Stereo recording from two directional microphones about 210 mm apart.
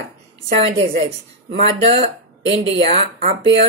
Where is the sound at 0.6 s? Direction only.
30° right (ahead or behind).